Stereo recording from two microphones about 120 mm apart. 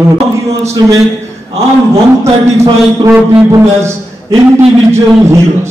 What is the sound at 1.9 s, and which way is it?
A man's voice, 25° right (ahead or behind).